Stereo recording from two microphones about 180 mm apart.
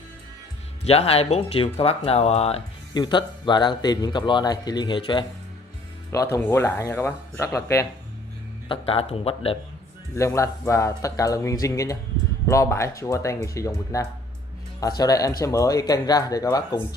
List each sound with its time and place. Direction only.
0.8 s speech: 35° left (ahead or behind)
2.9 s a man's voice: 25° left (ahead or behind)
6.1 s speech: 15° left (ahead or behind)
8.6 s speech: 30° left (ahead or behind)
10.1 s a man's voice: 15° left (ahead or behind)